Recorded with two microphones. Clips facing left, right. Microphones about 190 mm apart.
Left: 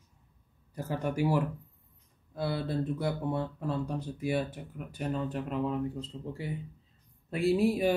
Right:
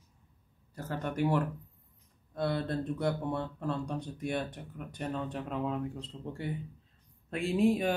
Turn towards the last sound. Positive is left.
turn(degrees=5)  # may be behind; listen again after turning